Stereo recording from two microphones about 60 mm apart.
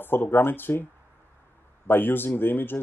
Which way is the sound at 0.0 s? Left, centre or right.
Left.